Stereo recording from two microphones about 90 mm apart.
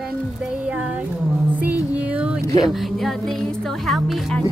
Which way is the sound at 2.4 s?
45° left (ahead or behind).